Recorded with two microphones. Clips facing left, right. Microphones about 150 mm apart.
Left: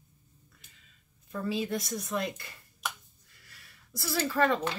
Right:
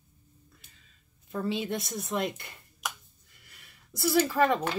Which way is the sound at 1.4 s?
25° right (ahead or behind).